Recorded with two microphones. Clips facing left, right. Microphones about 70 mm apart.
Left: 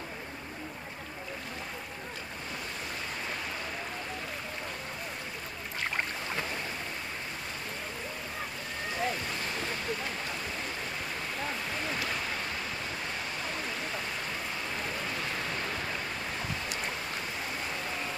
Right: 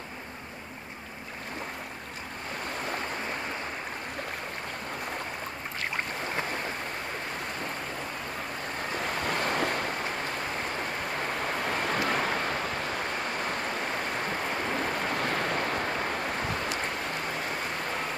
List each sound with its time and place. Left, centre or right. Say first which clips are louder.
9.0 s waves: right 4 dB; right
11.2 s vehicle: right 5 dB; right
13.5 s a sound: right 4 dB; right